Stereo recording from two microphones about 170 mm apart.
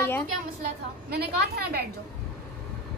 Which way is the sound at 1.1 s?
65° right (ahead or behind).